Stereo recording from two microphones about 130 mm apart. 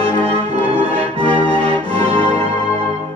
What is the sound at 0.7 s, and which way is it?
Music, 50° right (ahead or behind).